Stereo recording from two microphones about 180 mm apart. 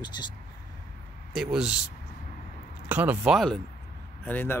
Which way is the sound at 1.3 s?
5° right (ahead or behind).